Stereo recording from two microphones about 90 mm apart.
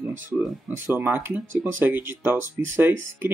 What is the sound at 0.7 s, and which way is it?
Speech, 25° right (ahead or behind).